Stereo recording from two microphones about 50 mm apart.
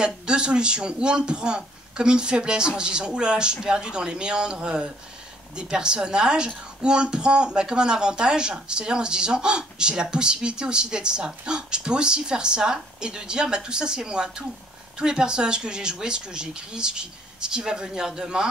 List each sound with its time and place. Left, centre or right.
0.0 s a woman's voice: centre